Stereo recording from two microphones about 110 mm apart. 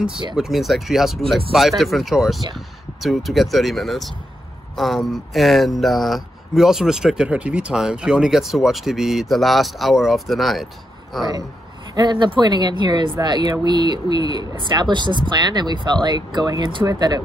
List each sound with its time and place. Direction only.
0.4 s speech: centre (ahead or behind)
11.9 s speech: 40° right (ahead or behind)